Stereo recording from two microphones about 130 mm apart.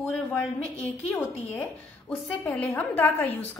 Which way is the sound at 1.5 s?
10° left (ahead or behind).